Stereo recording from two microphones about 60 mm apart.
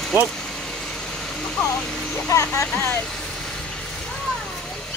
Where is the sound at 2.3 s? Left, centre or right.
Left.